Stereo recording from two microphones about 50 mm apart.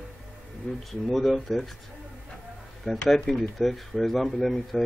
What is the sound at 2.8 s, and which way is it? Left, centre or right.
Speech, centre.